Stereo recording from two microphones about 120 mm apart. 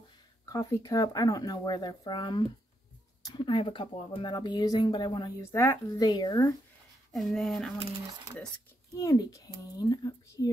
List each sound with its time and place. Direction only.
0.5 s speech: 30° left (ahead or behind)
5.4 s speech: 25° left (ahead or behind)
7.1 s speech: centre (ahead or behind)
8.9 s speech: 30° left (ahead or behind)